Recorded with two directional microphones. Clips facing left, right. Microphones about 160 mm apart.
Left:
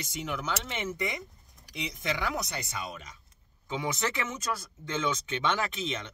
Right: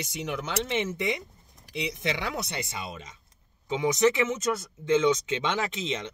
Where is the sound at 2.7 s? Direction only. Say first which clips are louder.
Right 1 dB; 25° right (ahead or behind).